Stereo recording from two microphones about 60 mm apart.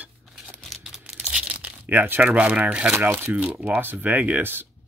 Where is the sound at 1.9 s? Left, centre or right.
Right.